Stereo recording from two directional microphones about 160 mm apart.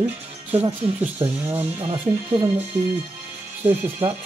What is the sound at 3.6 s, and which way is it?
Speech, 15° right (ahead or behind).